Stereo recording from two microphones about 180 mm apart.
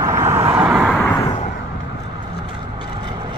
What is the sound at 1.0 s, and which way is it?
Vehicle, 20° left (ahead or behind).